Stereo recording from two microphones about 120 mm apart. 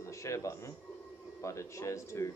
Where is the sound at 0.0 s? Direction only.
25° left (ahead or behind).